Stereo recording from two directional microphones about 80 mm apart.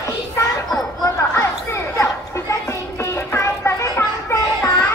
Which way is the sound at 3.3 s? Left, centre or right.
Left.